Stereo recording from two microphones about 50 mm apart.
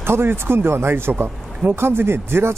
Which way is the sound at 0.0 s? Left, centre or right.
Right.